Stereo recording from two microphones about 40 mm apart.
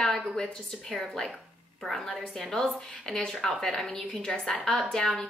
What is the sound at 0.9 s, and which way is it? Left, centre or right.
A woman's voice, centre.